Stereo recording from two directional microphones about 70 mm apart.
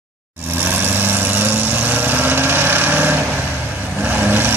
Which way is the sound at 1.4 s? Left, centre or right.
Right.